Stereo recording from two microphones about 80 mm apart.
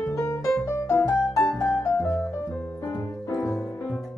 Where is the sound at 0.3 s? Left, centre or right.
Left.